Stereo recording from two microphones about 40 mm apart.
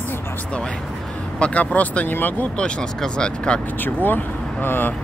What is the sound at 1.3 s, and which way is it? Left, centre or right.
Speech, left.